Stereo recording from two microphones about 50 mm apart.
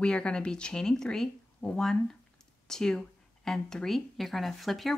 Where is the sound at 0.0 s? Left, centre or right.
Centre.